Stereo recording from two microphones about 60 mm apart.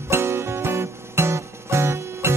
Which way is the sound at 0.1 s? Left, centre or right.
Right.